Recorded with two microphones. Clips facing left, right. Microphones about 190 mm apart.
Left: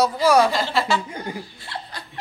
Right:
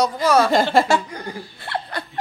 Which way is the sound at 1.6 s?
60° right (ahead or behind).